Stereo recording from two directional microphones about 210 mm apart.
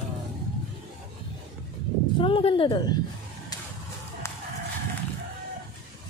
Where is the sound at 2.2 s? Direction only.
25° left (ahead or behind).